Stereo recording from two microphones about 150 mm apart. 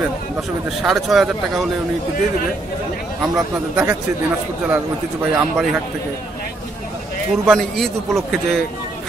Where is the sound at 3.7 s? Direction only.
10° right (ahead or behind).